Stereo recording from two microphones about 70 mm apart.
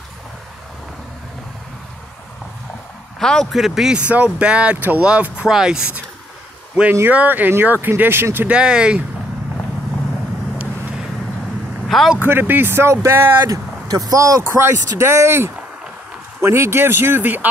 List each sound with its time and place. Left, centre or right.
3.2 s speech: centre
3.5 s speech: centre
4.1 s speech: centre
6.9 s speech: right
8.5 s speech: centre
12.2 s speech: right
13.5 s speech: right
14.5 s speech: right